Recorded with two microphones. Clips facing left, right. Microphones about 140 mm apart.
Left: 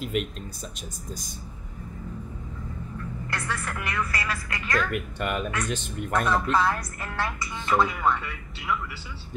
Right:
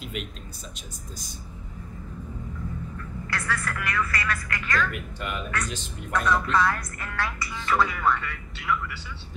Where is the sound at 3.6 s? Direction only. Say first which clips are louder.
Right 1 dB; 25° left (ahead or behind).